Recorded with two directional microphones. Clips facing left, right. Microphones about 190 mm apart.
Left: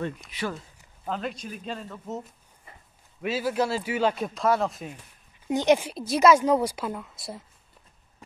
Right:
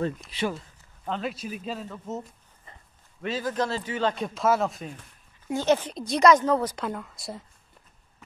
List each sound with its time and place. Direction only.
0.3 s speech: 30° right (ahead or behind)
1.0 s speech: centre (ahead or behind)
5.5 s a woman's voice: 15° left (ahead or behind); by 7.4 s centre (ahead or behind)